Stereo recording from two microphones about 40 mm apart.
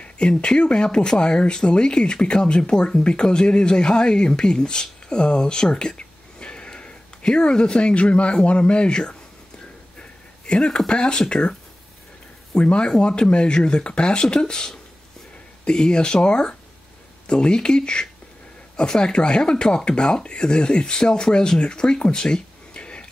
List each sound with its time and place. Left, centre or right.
0.0 s speech: left
10.4 s speech: left
12.5 s speech: left
22.8 s a sound: left